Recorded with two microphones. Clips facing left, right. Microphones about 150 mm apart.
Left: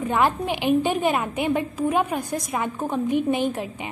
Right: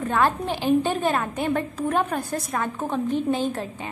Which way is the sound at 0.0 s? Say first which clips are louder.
Left 1 dB; 15° left (ahead or behind).